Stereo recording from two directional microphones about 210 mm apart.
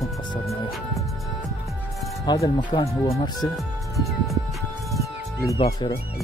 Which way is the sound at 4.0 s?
Centre (ahead or behind).